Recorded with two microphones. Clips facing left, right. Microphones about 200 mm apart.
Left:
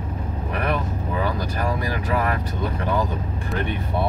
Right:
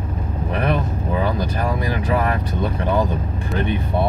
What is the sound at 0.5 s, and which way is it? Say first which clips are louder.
Vehicle: right 4 dB; 25° right (ahead or behind).